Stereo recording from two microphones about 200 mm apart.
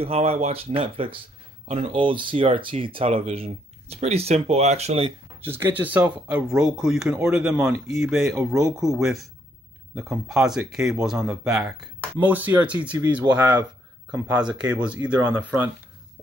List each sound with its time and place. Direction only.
0.0 s speech: 30° right (ahead or behind)
5.4 s speech: 10° right (ahead or behind)
8.5 s speech: 15° right (ahead or behind)
8.8 s speech: centre (ahead or behind)